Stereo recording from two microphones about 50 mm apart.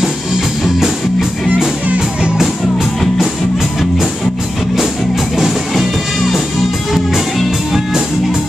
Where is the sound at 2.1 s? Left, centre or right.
Right.